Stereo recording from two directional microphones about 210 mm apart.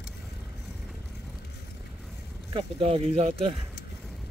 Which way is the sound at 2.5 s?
25° right (ahead or behind).